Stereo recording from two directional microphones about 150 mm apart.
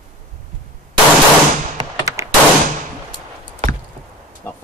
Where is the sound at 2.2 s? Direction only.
20° right (ahead or behind).